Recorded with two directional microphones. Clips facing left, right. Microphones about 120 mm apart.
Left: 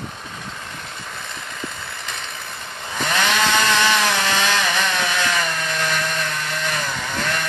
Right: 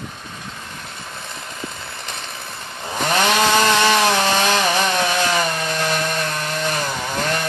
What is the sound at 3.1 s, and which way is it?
Chainsaw, 35° right (ahead or behind).